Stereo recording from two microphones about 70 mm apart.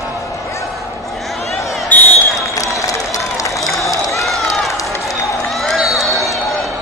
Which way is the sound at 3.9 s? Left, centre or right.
Left.